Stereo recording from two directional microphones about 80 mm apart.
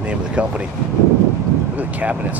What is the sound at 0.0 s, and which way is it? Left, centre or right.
Speech, centre.